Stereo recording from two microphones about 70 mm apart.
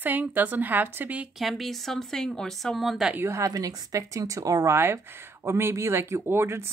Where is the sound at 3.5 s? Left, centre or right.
Right.